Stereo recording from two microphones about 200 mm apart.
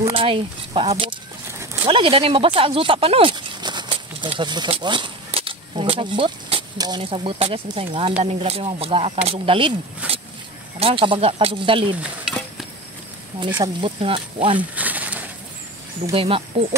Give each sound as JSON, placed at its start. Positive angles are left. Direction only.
{"t": 0.1, "sound": "speech", "side_deg": -25}
{"t": 1.5, "sound": "a sound", "side_deg": -15}
{"t": 1.9, "sound": "speech", "side_deg": -25}
{"t": 10.0, "sound": "a sound", "side_deg": -5}
{"t": 10.8, "sound": "speech", "side_deg": -25}
{"t": 12.0, "sound": "stir", "side_deg": 0}
{"t": 13.7, "sound": "speech", "side_deg": -25}
{"t": 14.6, "sound": "a sound", "side_deg": -10}
{"t": 16.1, "sound": "speech", "side_deg": -25}